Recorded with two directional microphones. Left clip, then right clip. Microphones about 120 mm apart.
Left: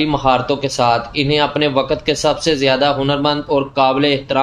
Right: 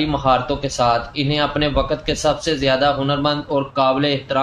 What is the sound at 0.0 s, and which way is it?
Speech, 40° left (ahead or behind).